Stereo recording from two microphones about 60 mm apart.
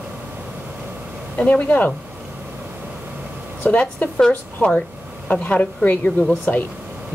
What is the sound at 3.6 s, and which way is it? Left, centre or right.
Speech, left.